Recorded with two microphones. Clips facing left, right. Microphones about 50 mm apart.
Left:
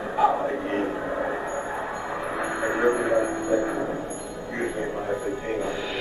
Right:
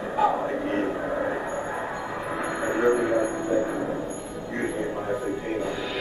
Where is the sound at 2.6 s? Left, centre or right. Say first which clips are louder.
Right 1 dB; centre.